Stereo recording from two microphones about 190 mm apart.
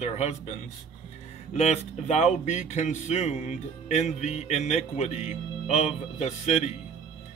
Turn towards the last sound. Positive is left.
turn(degrees=35)  # may be behind; listen again after turning